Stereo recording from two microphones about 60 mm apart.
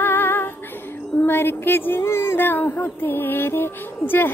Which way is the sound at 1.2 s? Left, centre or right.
Left.